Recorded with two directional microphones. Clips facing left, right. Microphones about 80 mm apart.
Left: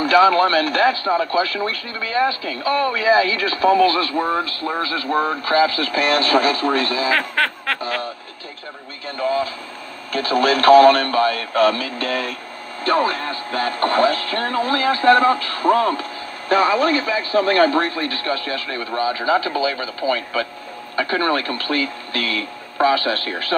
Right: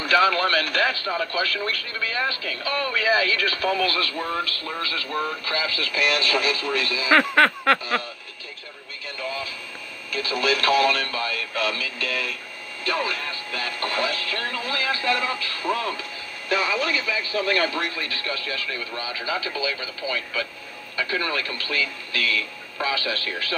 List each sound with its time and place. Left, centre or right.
0.0 s speech: left
7.1 s a sound: centre
9.2 s speech: left